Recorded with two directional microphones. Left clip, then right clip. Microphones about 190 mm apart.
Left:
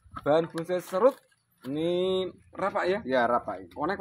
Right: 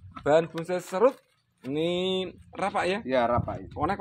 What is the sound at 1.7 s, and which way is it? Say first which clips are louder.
Speech: even; 35° right (ahead or behind).